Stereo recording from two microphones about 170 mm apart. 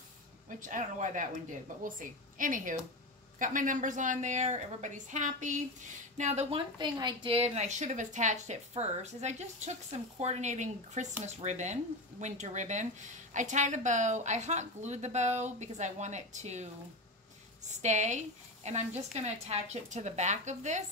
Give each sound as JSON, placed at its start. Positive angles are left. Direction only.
{"t": 0.5, "sound": "a woman's voice", "side_deg": -50}
{"t": 6.8, "sound": "a woman's voice", "side_deg": -25}
{"t": 17.6, "sound": "a woman's voice", "side_deg": -45}